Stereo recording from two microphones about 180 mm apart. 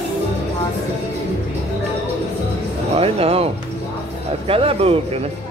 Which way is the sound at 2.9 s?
35° right (ahead or behind).